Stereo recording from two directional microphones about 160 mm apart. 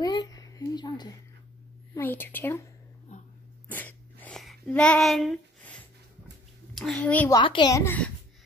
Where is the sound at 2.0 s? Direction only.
10° left (ahead or behind).